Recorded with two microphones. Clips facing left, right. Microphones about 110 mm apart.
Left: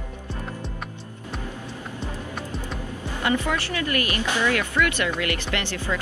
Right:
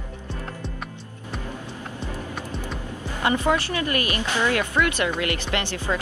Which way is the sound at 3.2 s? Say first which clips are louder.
Right 3 dB; 25° right (ahead or behind).